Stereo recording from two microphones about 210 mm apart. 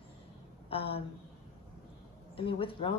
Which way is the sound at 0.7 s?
25° left (ahead or behind).